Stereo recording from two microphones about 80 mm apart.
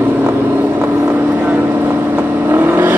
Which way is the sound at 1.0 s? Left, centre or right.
Right.